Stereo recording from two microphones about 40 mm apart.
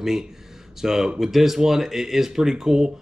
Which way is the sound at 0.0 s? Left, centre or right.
Centre.